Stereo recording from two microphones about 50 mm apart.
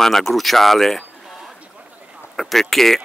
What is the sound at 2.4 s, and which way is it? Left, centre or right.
Speech, centre.